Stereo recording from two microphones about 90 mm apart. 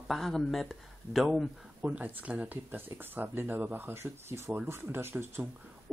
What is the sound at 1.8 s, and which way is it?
Speech, 15° right (ahead or behind).